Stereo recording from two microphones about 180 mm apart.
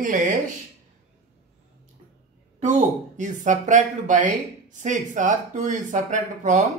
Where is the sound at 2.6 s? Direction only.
45° right (ahead or behind).